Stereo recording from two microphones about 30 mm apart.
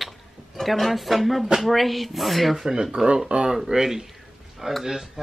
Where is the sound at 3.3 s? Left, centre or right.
Right.